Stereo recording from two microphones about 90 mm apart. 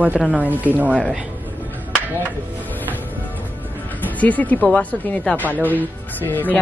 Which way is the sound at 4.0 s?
15° left (ahead or behind).